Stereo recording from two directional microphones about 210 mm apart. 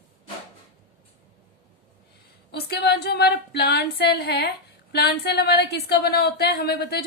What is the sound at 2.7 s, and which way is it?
Speech, 50° left (ahead or behind).